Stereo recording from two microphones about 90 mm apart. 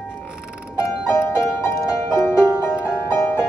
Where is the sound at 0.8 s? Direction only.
30° left (ahead or behind).